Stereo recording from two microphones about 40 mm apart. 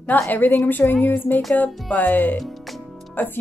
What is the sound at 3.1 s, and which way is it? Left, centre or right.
Speech, left.